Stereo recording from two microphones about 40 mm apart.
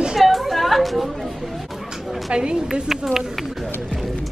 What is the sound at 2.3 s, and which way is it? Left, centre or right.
Speech, right.